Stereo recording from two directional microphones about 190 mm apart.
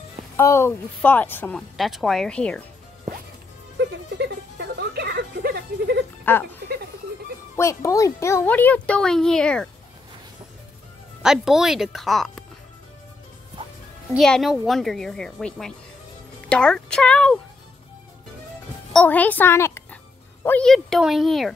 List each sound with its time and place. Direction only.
0.4 s speech: 15° left (ahead or behind)
3.7 s music: 65° right (ahead or behind)
6.2 s speech: 10° left (ahead or behind)
11.2 s speech: centre (ahead or behind)
14.1 s speech: centre (ahead or behind)
18.9 s a woman's voice: 10° left (ahead or behind)